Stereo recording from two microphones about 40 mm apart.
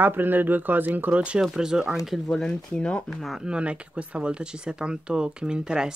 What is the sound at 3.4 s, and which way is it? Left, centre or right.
Speech, right.